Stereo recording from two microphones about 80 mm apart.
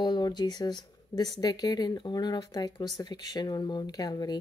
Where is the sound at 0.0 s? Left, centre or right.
Left.